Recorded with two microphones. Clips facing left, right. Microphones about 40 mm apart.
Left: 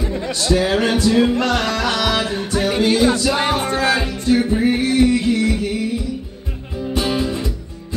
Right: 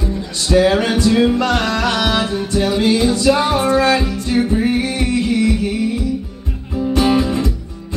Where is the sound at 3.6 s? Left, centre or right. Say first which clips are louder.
Right 5 dB; left.